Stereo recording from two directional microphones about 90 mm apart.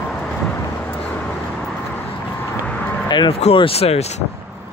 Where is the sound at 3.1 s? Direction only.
65° left (ahead or behind); by 4.0 s 90° left.